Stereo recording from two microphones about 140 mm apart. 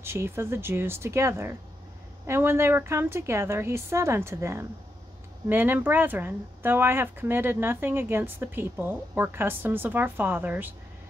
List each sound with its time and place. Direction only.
0.0 s a woman's voice: 20° right (ahead or behind)